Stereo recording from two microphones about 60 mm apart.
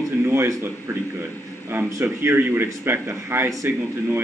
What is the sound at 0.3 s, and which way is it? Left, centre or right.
Speech, right.